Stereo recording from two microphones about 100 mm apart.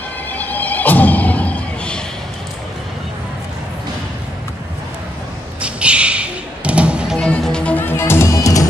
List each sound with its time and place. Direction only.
0.3 s music: 15° left (ahead or behind)
5.6 s music: 10° right (ahead or behind)
7.2 s music: 5° left (ahead or behind); by 8.6 s 30° left (ahead or behind)